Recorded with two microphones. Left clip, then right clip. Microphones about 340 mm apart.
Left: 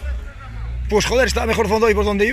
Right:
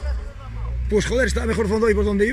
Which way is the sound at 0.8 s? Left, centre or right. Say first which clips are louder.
Left 4 dB; centre.